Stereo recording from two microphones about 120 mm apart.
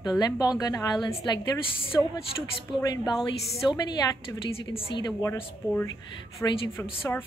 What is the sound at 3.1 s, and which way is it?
Speech, 40° left (ahead or behind).